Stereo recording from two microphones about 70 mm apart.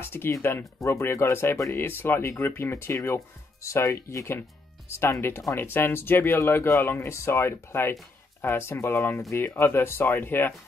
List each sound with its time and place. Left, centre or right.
0.0 s speech: left
9.3 s speech: left